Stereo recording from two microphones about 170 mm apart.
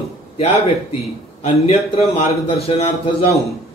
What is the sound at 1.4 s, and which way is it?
A man's voice, 35° left (ahead or behind).